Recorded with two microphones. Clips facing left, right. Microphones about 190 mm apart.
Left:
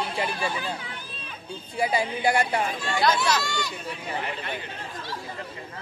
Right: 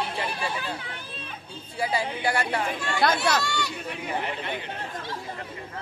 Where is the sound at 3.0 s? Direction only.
60° right (ahead or behind).